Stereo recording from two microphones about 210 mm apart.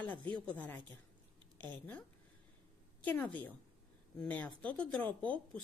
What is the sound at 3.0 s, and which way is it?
Speech, 5° left (ahead or behind).